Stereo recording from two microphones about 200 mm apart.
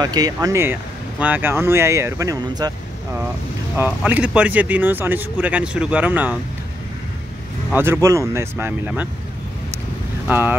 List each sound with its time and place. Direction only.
0.0 s speech: 20° right (ahead or behind)
3.7 s speech: 10° right (ahead or behind)
7.7 s speech: 10° right (ahead or behind)
10.2 s speech: 10° right (ahead or behind)